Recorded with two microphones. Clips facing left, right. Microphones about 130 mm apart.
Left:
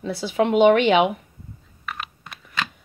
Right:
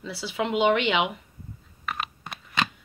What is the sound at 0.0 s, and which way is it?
Speech, 50° left (ahead or behind).